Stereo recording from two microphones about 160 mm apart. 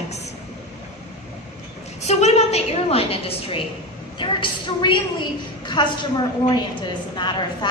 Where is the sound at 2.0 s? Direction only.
45° left (ahead or behind); by 5.9 s 25° left (ahead or behind).